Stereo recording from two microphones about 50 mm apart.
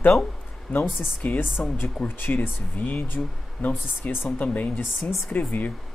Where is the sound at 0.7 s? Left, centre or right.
Left.